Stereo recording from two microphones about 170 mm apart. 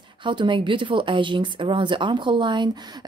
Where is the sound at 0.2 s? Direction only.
30° right (ahead or behind).